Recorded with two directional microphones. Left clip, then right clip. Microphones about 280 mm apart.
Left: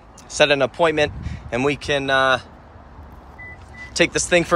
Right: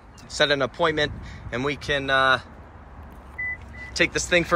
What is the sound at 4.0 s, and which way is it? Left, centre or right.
Speech, centre.